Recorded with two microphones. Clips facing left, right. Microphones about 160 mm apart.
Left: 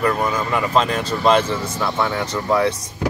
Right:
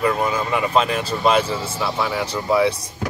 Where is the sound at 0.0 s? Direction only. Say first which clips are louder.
Even; 10° right (ahead or behind).